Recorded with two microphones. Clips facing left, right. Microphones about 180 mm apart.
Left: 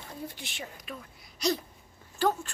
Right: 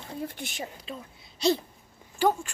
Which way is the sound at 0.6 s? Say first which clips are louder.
Right 3 dB; 25° right (ahead or behind).